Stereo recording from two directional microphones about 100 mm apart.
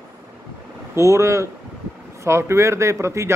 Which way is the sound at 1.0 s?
30° right (ahead or behind).